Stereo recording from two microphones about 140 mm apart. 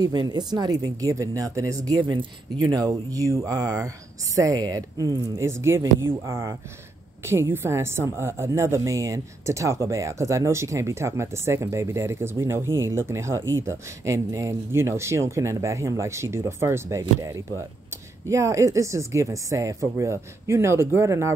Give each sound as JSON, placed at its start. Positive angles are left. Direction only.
{"t": 0.0, "sound": "a woman's voice", "side_deg": -30}
{"t": 2.0, "sound": "a woman's voice", "side_deg": -35}
{"t": 18.3, "sound": "a woman's voice", "side_deg": -20}